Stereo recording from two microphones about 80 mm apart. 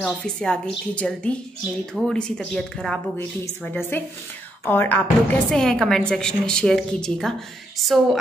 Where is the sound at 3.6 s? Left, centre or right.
Left.